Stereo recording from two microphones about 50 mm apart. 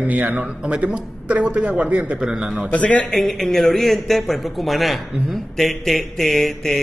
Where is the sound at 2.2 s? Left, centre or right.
Centre.